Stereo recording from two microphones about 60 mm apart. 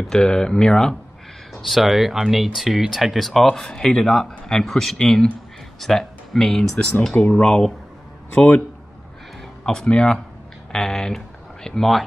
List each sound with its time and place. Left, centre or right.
0.0 s speech: centre
1.5 s speech: centre
8.4 s a man's voice: left
9.7 s speech: centre